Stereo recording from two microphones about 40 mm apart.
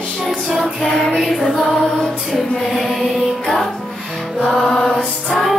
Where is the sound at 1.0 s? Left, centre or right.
Centre.